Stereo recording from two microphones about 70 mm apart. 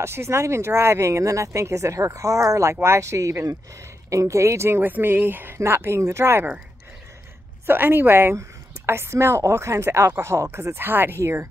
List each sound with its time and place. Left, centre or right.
0.0 s a woman's voice: right
7.6 s a woman's voice: right